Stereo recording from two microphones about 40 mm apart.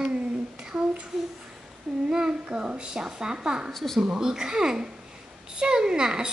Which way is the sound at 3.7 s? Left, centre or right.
Centre.